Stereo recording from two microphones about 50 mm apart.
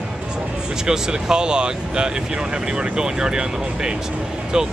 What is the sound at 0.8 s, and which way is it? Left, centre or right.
Speech, centre.